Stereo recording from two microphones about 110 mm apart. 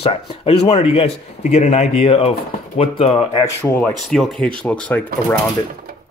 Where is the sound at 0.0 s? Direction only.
60° left (ahead or behind).